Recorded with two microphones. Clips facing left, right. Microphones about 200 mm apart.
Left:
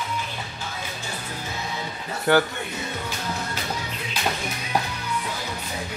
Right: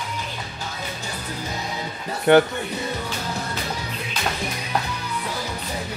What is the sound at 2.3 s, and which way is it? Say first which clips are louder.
Speech: right 5 dB; 20° right (ahead or behind).